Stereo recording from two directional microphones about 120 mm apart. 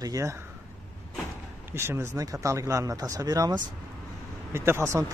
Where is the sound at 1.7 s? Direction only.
20° right (ahead or behind).